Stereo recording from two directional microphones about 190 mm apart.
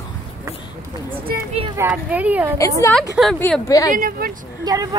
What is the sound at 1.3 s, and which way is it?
Speech, 55° right (ahead or behind).